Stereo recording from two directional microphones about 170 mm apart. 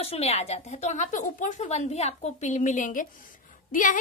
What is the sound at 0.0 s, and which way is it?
A woman's voice, 35° left (ahead or behind).